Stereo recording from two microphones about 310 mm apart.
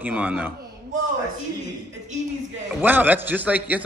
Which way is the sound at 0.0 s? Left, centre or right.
Centre.